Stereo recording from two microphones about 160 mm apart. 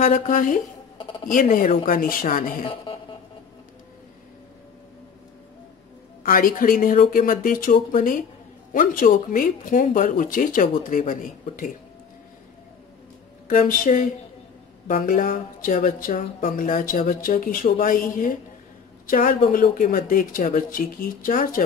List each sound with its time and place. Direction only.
0.0 s speech: 55° left (ahead or behind)
2.6 s a sound: 35° left (ahead or behind)
6.2 s speech: 60° left (ahead or behind)
13.5 s speech: 60° left (ahead or behind)